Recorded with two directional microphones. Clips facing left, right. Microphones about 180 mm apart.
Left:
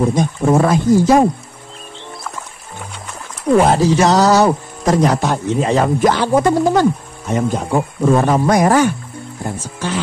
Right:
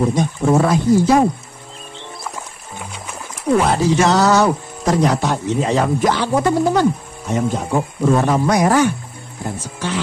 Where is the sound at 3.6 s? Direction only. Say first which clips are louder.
Left 2 dB; 35° left (ahead or behind).